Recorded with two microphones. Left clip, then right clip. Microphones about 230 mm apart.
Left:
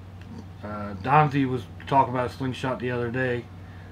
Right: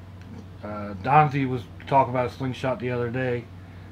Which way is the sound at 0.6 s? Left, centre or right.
Centre.